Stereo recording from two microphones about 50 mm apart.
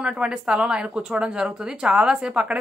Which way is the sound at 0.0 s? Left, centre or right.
Centre.